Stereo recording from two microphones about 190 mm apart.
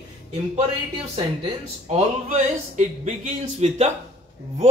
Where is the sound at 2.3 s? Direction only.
40° right (ahead or behind).